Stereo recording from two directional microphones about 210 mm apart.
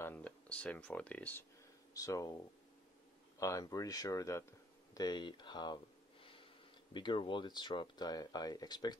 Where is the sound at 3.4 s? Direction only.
15° left (ahead or behind).